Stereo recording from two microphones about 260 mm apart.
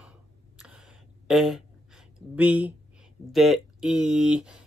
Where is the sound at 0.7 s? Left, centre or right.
Centre.